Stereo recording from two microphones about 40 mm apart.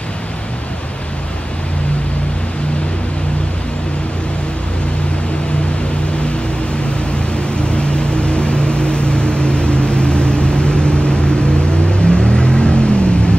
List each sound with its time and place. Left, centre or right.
7.5 s vehicle: left